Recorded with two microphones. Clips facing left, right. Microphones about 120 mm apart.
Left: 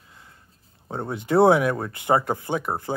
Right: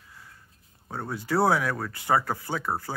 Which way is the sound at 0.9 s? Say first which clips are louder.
Left 5 dB; 20° left (ahead or behind).